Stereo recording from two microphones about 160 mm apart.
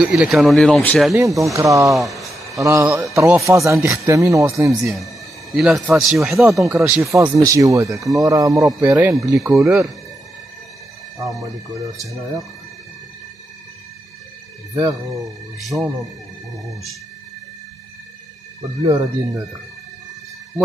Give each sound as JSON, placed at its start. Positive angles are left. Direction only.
{"t": 0.0, "sound": "speech", "side_deg": -5}
{"t": 1.1, "sound": "a man's voice", "side_deg": -20}
{"t": 2.0, "sound": "a sound", "side_deg": 0}
{"t": 2.6, "sound": "a man's voice", "side_deg": -15}
{"t": 4.8, "sound": "a man's voice", "side_deg": 0}
{"t": 6.5, "sound": "a man's voice", "side_deg": -20}
{"t": 12.0, "sound": "speech", "side_deg": 0}
{"t": 15.6, "sound": "speech", "side_deg": 0}
{"t": 18.6, "sound": "a man's voice", "side_deg": -20}